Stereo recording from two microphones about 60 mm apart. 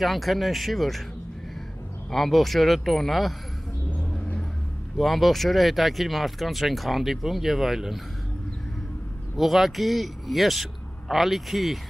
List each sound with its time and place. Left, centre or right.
0.0 s speech: centre
2.0 s speech: centre
4.9 s speech: centre
9.4 s speech: centre